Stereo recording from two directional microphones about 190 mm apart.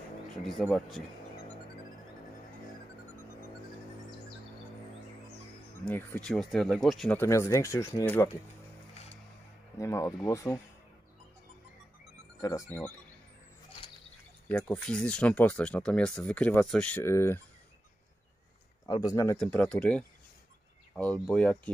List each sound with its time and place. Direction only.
0.5 s speech: centre (ahead or behind)
5.9 s speech: 10° left (ahead or behind)
8.9 s music: 35° left (ahead or behind)
9.8 s speech: 15° left (ahead or behind)
12.4 s speech: 15° left (ahead or behind)
14.5 s speech: 5° left (ahead or behind)
18.9 s speech: 20° left (ahead or behind)
19.3 s speech: 5° left (ahead or behind)